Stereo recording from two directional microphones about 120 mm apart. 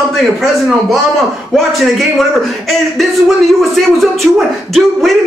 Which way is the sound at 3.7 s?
Centre (ahead or behind).